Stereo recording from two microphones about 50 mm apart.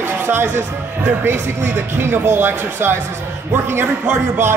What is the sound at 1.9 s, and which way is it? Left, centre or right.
A woman's voice, right.